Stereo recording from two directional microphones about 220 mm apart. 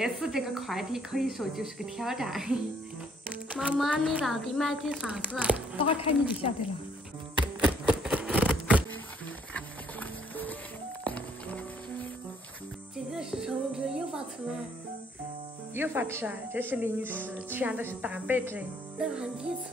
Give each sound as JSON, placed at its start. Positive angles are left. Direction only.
{"t": 0.0, "sound": "a woman's voice", "side_deg": 0}
{"t": 5.8, "sound": "speech", "side_deg": 25}
{"t": 7.6, "sound": "a sound", "side_deg": -5}
{"t": 9.9, "sound": "music", "side_deg": 5}
{"t": 15.7, "sound": "speech", "side_deg": -10}